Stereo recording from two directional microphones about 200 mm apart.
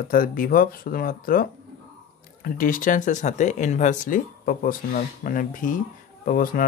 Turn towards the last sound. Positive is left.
turn(degrees=45)  # may be behind; listen again after turning